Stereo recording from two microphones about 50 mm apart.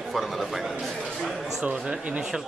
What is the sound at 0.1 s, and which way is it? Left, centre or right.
Speech, centre.